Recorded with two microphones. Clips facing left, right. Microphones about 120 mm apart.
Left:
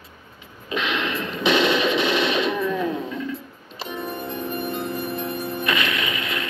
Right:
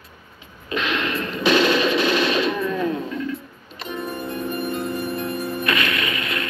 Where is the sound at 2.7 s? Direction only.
15° left (ahead or behind).